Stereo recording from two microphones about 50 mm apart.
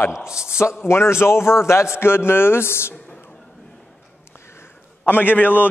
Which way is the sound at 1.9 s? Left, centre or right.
Left.